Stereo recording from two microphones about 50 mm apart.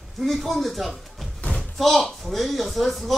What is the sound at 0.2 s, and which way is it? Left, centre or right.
Speech, centre.